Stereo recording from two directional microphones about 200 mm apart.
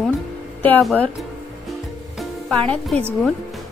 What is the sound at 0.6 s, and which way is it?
Speech, 10° left (ahead or behind).